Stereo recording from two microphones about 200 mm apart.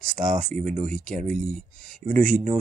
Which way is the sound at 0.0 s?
40° right (ahead or behind).